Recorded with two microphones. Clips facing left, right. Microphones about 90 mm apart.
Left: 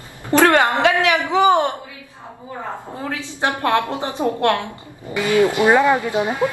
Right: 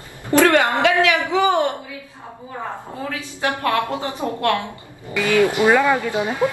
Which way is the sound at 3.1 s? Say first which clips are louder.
Left 2 dB; 25° left (ahead or behind).